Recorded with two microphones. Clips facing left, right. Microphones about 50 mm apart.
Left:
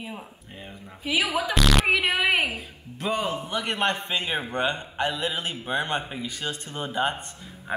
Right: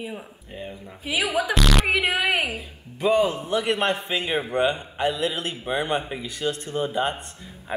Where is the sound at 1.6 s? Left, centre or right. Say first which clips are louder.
Left 2 dB; centre.